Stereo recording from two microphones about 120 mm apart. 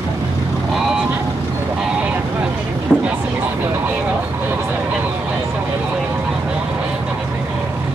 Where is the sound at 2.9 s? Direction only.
10° left (ahead or behind).